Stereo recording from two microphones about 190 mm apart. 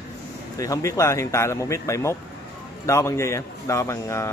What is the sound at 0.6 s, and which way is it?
Speech, 15° left (ahead or behind).